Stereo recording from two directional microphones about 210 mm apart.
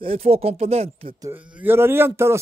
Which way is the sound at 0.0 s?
30° right (ahead or behind).